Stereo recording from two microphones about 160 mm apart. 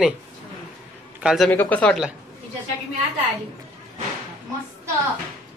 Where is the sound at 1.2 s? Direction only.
5° right (ahead or behind).